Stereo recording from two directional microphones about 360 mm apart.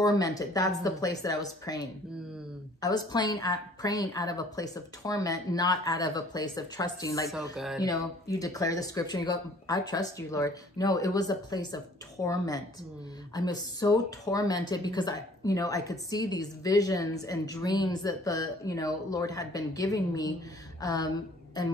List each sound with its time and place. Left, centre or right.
0.0 s speech: centre